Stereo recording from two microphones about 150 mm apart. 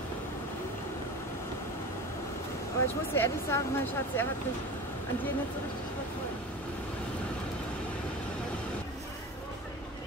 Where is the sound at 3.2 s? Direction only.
15° left (ahead or behind).